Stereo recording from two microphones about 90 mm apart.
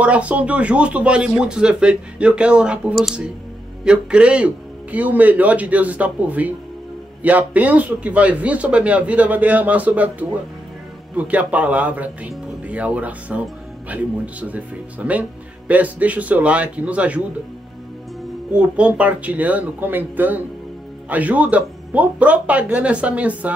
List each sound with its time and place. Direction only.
0.0 s speech: 15° right (ahead or behind)
18.5 s speech: 15° right (ahead or behind)